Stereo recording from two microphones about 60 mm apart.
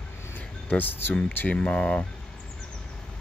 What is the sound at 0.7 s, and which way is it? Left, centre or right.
Speech, left.